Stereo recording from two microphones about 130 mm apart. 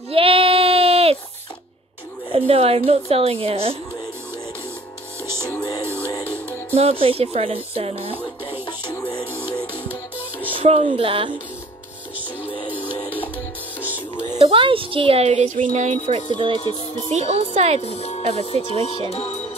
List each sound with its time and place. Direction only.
0.1 s child singing: 45° right (ahead or behind)
2.3 s music: 50° right (ahead or behind)
5.4 s music: 30° left (ahead or behind)
6.7 s music: 50° right (ahead or behind)
9.2 s music: 15° right (ahead or behind)
10.5 s music: 45° right (ahead or behind)
12.6 s music: 15° right (ahead or behind)
14.4 s music: 45° right (ahead or behind); by 15.6 s 65° right (ahead or behind)
15.7 s a child's voice: 60° right (ahead or behind)
16.3 s music: 40° right (ahead or behind)
17.1 s a child's voice: 60° right (ahead or behind)
17.8 s speech: 55° left (ahead or behind)
18.3 s music: 50° left (ahead or behind)